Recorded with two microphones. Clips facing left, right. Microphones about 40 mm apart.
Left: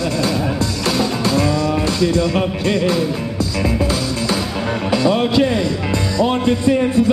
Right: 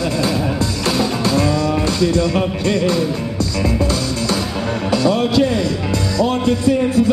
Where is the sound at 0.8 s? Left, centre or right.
Centre.